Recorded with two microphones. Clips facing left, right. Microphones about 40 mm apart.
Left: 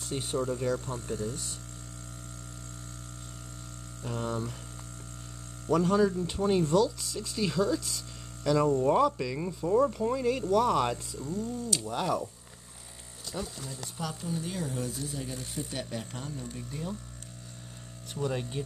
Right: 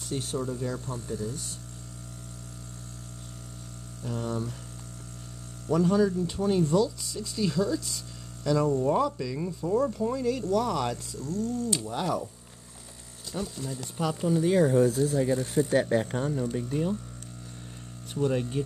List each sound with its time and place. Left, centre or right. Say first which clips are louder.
0.1 s speech: right 1 dB; centre
0.4 s speech: left 2 dB; left
4.0 s speech: right 1 dB; left
5.7 s speech: right 1 dB; centre
6.7 s insect: even; centre
7.2 s speech: right 1 dB; centre
8.6 s speech: left 1 dB; left
9.0 s speech: left 1 dB; centre
11.8 s insect: right 1 dB; centre
13.3 s insect: right 4 dB; centre
14.0 s speech: right 10 dB; right
16.6 s speech: right 9 dB; right
18.1 s speech: right 5 dB; centre